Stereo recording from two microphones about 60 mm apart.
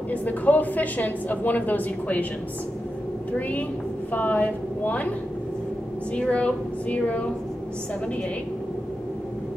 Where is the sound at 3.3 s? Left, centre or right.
Left.